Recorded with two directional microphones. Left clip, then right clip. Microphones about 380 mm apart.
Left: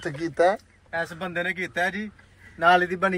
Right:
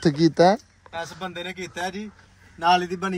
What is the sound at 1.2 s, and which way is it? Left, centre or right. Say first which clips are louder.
Speech: left 4 dB; centre.